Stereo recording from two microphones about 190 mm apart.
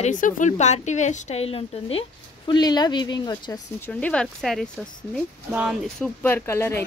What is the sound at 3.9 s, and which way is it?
Speech, 5° left (ahead or behind).